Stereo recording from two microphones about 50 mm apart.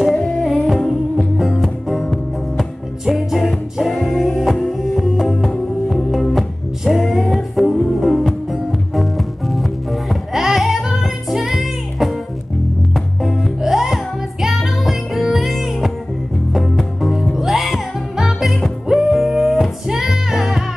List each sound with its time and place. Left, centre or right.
0.0 s music: centre
7.3 s music: centre